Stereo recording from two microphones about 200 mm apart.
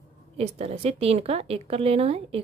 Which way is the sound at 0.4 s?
30° right (ahead or behind).